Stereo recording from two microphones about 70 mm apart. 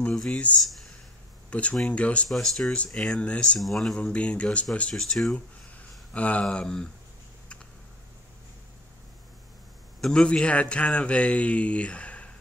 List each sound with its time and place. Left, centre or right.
0.1 s a man's voice: centre
1.5 s speech: centre
2.2 s a man's voice: centre
3.5 s speech: centre
4.0 s a man's voice: centre
6.1 s a man's voice: centre
9.9 s a man's voice: centre